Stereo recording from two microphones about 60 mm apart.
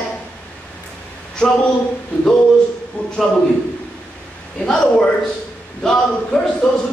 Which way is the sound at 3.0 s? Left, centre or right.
Left.